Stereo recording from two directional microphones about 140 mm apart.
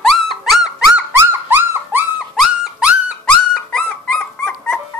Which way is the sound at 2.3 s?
5° right (ahead or behind).